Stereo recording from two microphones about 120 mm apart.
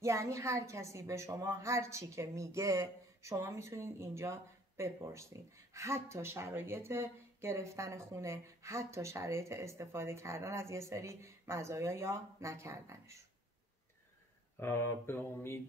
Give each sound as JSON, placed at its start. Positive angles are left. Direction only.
{"t": 0.0, "sound": "a woman's voice", "side_deg": -25}
{"t": 14.6, "sound": "speech", "side_deg": 20}